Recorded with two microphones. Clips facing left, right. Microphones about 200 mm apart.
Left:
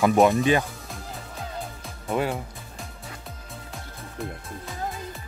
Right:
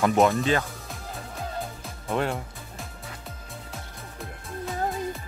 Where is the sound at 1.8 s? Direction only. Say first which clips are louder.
Left 2 dB; 5° left (ahead or behind).